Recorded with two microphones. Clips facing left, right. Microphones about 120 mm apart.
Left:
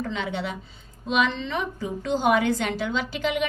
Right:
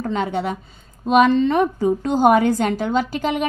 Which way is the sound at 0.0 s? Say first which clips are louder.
Right 7 dB; 45° right (ahead or behind).